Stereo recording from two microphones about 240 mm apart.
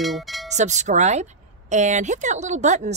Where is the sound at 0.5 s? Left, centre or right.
Right.